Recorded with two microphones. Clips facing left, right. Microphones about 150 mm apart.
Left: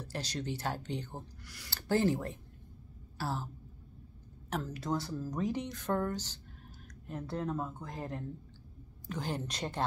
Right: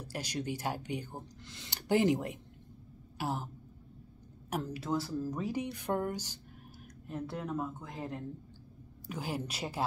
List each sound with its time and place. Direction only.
0.0 s speech: 10° right (ahead or behind)
1.4 s speech: 20° right (ahead or behind)
4.5 s speech: 10° right (ahead or behind)